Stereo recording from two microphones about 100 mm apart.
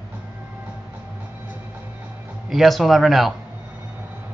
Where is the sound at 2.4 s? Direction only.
Centre (ahead or behind).